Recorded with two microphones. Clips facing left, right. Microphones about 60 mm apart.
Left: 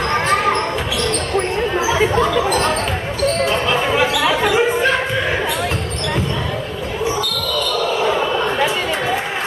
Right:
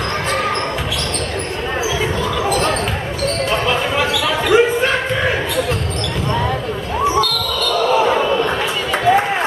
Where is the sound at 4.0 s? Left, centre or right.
Centre.